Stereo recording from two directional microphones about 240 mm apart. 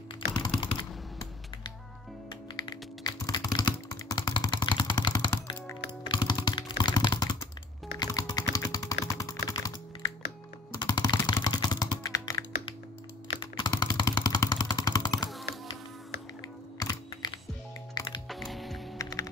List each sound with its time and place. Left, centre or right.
0.3 s typing: centre
2.6 s typing: centre
10.7 s computer keyboard: centre
13.4 s vehicle: centre
16.8 s computer keyboard: centre
18.3 s music: centre
18.9 s typing: centre